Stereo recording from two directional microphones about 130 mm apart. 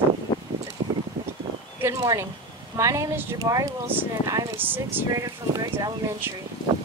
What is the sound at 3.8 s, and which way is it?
Speech, 15° right (ahead or behind).